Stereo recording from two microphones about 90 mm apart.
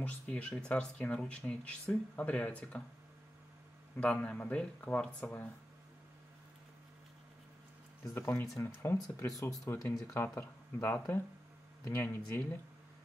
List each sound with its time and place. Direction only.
0.0 s speech: 15° left (ahead or behind)
4.0 s speech: 15° left (ahead or behind)
8.1 s speech: 25° left (ahead or behind)